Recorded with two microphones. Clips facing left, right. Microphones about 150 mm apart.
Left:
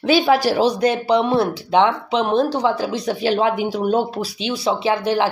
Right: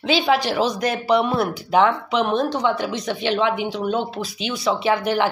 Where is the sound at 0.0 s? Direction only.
45° left (ahead or behind).